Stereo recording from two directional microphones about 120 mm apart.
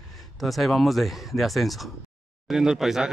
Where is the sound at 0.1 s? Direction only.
Centre (ahead or behind).